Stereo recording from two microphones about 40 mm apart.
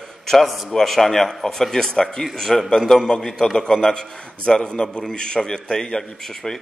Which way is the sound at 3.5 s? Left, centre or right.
Centre.